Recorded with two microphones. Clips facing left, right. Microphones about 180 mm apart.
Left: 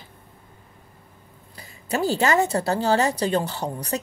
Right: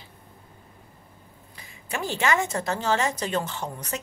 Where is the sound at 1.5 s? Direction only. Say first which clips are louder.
Left 7 dB; 35° left (ahead or behind).